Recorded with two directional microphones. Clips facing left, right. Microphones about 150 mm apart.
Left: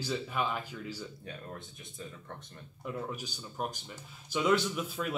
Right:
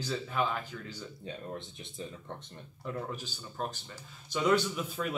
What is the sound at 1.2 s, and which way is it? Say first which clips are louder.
Speech: right 4 dB; 25° right (ahead or behind).